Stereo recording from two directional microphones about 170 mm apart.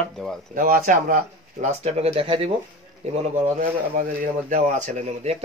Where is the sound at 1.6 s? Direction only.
40° right (ahead or behind).